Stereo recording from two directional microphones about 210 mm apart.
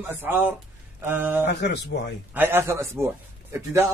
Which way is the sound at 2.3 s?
10° right (ahead or behind).